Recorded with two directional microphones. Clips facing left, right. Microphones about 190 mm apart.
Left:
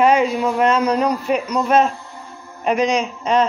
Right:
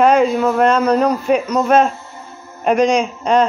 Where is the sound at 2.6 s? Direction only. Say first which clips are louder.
Right 4 dB; 45° right (ahead or behind).